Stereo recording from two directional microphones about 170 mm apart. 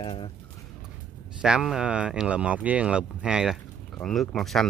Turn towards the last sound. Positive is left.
turn(degrees=0)  # may be behind; listen again after turning